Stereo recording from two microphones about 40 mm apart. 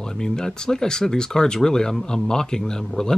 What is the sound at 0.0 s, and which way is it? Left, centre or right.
Speech, centre.